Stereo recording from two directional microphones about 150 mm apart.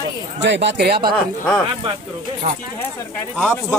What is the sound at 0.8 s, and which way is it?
Speech, 90° right.